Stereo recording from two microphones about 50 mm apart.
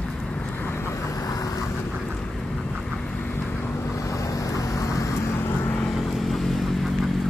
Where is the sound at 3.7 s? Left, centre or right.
Left.